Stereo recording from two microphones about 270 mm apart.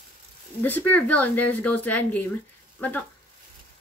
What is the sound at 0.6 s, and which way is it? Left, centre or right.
A woman's voice, centre.